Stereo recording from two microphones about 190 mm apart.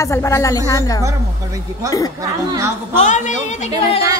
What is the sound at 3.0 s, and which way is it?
A woman's voice, 40° left (ahead or behind).